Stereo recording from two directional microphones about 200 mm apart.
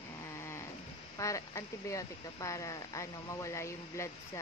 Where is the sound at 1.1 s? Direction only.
15° left (ahead or behind).